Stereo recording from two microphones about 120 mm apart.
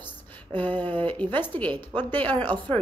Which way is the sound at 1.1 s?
15° left (ahead or behind).